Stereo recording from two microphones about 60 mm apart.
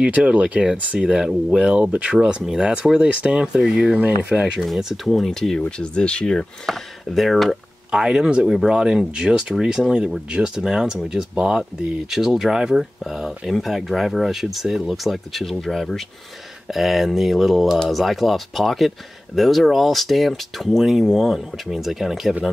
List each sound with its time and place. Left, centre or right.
0.0 s speech: centre
4.6 s speech: centre
6.6 s speech: centre
7.9 s speech: centre